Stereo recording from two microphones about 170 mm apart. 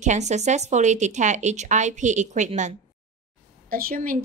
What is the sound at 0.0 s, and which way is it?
Speech, 45° right (ahead or behind).